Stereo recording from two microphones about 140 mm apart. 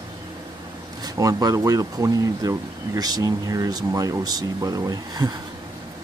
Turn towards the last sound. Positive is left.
turn(degrees=-25)  # may be behind; listen again after turning